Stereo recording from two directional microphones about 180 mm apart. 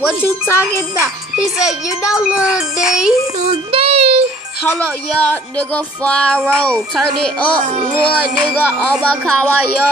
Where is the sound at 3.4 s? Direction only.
30° right (ahead or behind).